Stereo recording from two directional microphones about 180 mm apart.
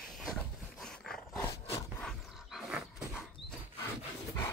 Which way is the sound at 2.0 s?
Centre (ahead or behind).